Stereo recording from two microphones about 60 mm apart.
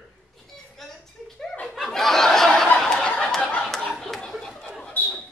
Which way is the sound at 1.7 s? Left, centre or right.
Centre.